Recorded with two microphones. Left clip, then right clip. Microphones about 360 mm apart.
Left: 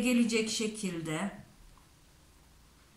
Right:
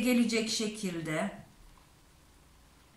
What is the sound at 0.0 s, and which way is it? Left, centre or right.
A woman's voice, centre.